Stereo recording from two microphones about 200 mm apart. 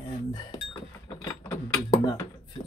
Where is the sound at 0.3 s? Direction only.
20° left (ahead or behind).